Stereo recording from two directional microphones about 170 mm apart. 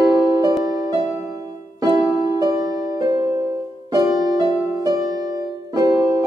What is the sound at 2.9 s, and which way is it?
Music, 20° right (ahead or behind).